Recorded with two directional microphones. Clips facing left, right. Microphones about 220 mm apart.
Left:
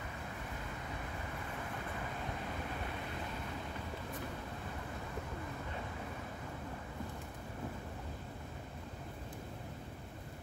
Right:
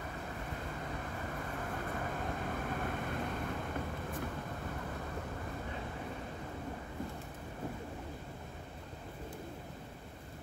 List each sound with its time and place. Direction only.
2.7 s vehicle: 50° right (ahead or behind)